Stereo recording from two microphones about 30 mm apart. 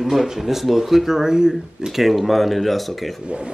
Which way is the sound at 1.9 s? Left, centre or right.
Centre.